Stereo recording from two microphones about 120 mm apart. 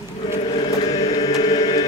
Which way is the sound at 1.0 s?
60° left (ahead or behind).